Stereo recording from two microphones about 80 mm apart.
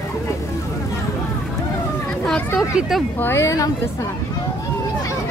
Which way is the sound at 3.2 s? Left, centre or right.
Left.